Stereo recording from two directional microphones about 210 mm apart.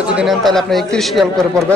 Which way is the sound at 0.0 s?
5° right (ahead or behind).